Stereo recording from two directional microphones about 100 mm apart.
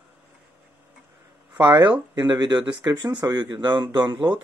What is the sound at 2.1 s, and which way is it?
Speech, 45° right (ahead or behind).